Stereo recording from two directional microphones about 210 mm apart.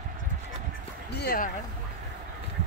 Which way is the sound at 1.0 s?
50° left (ahead or behind).